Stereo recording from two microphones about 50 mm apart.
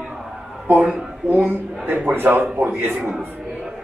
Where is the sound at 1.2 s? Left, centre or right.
Right.